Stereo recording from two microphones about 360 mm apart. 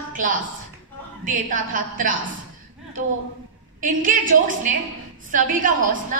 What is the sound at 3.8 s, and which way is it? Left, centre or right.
A woman's voice, right.